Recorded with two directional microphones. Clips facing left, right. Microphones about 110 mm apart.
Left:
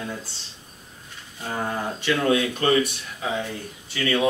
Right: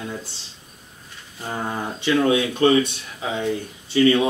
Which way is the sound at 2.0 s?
20° right (ahead or behind).